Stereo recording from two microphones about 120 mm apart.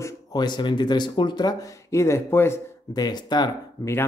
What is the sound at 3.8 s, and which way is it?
Speech, 25° left (ahead or behind).